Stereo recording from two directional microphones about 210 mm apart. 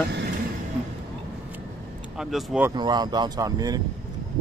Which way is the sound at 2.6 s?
20° right (ahead or behind).